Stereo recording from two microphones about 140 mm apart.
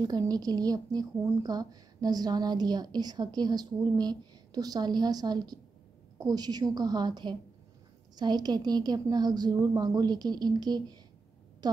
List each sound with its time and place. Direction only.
0.0 s a woman's voice: 30° right (ahead or behind)